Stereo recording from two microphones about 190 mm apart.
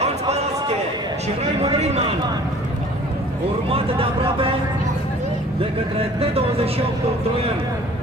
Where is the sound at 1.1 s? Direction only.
35° right (ahead or behind).